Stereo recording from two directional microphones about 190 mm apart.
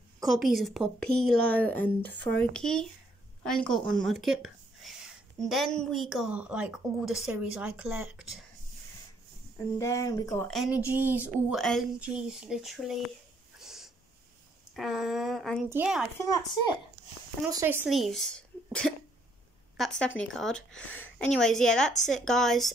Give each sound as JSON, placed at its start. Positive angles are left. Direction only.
{"t": 0.2, "sound": "a woman's voice", "side_deg": 0}
{"t": 9.8, "sound": "a woman's voice", "side_deg": 15}
{"t": 10.5, "sound": "a woman's voice", "side_deg": -5}
{"t": 13.6, "sound": "snort", "side_deg": 0}
{"t": 14.8, "sound": "a woman's voice", "side_deg": 0}
{"t": 16.2, "sound": "a woman's voice", "side_deg": 15}
{"t": 17.5, "sound": "speech", "side_deg": -15}
{"t": 17.8, "sound": "a woman's voice", "side_deg": 0}